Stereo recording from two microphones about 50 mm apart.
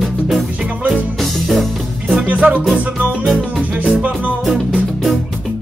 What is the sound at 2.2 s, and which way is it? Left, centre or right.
Music, right.